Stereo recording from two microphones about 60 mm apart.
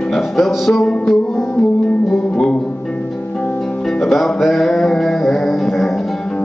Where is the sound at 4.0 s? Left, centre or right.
Centre.